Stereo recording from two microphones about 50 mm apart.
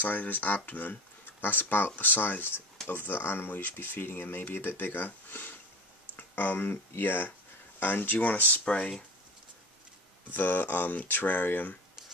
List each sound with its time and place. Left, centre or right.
0.0 s speech: left
10.3 s speech: left